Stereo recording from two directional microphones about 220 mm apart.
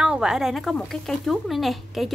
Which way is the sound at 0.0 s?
5° right (ahead or behind).